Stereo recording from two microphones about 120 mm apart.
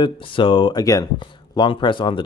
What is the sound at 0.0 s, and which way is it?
Speech, 45° left (ahead or behind).